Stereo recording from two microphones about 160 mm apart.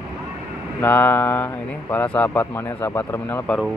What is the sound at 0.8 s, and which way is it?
Speech, 10° left (ahead or behind).